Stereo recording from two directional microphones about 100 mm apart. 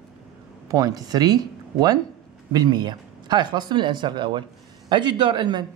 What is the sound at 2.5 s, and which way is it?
Speech, 45° right (ahead or behind).